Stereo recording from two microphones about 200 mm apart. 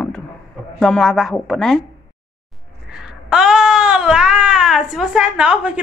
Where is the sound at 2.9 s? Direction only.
5° right (ahead or behind).